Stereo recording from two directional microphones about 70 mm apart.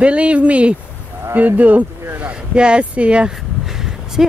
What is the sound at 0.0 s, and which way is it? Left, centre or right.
Speech, centre.